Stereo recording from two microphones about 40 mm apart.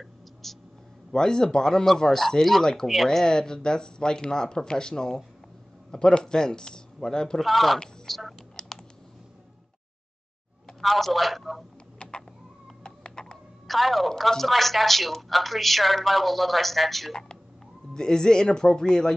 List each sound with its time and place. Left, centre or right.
0.0 s a sound: centre
1.1 s speech: centre
7.4 s speech: centre
10.8 s speech: centre
12.0 s a sound: left
12.8 s cat: centre
13.7 s speech: centre
17.9 s speech: centre